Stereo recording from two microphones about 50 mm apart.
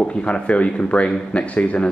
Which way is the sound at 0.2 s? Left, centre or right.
Left.